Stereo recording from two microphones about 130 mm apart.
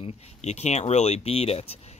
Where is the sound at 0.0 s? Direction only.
55° left (ahead or behind).